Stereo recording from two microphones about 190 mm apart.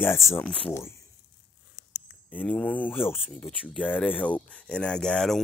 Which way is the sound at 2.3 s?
5° left (ahead or behind).